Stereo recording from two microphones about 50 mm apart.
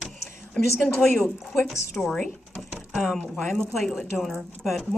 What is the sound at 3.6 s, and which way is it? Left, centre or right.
Speech, centre.